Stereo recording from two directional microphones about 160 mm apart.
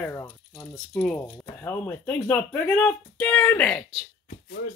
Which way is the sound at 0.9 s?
5° left (ahead or behind).